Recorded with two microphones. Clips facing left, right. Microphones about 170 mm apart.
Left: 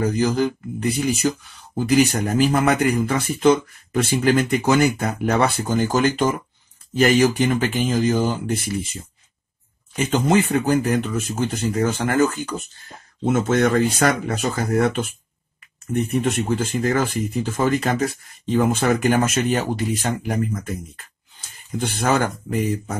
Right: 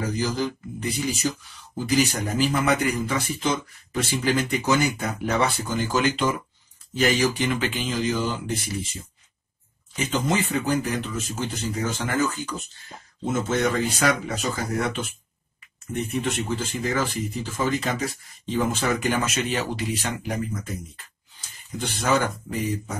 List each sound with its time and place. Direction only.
0.0 s speech: 55° left (ahead or behind)
9.9 s speech: 55° left (ahead or behind)
13.2 s speech: 65° left (ahead or behind)